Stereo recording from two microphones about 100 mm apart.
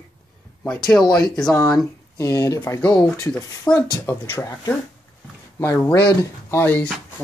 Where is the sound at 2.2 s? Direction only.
30° left (ahead or behind).